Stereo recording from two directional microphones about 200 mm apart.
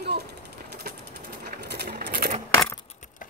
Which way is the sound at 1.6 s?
55° right (ahead or behind).